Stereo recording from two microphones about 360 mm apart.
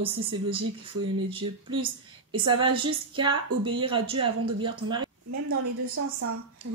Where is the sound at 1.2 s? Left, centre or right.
Centre.